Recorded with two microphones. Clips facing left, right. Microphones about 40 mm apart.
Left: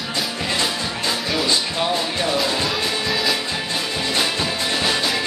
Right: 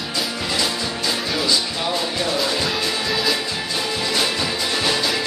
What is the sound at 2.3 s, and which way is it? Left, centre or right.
Music, centre.